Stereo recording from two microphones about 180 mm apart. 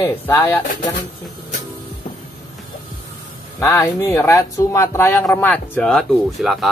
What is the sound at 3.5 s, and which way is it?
Speech, 20° left (ahead or behind).